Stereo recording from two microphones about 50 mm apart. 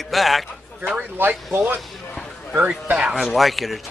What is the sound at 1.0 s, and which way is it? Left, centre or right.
Speech, right.